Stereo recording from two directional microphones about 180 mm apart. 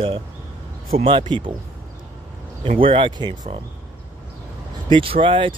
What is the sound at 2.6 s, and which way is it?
Speech, 30° right (ahead or behind).